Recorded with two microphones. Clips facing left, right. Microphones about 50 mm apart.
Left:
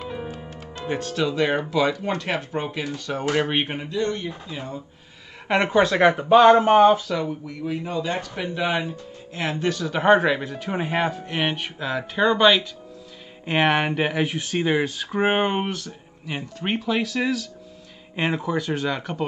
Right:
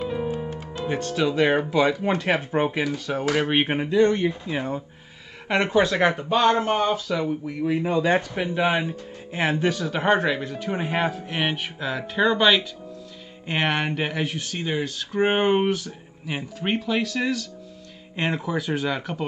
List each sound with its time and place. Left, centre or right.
0.0 s music: centre
0.4 s music: centre
0.8 s speech: centre; by 2.8 s right
2.8 s speech: centre
3.6 s speech: right
5.5 s speech: centre
7.1 s speech: centre
7.8 s speech: right
8.2 s speech: centre
9.7 s speech: centre
14.3 s speech: centre
15.1 s speech: centre